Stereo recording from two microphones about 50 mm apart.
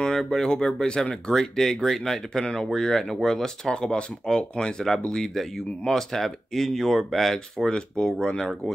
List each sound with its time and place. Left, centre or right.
0.0 s speech: centre